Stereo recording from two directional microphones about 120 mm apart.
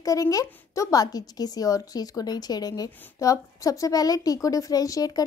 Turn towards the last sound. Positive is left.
turn(degrees=30)  # may be behind; listen again after turning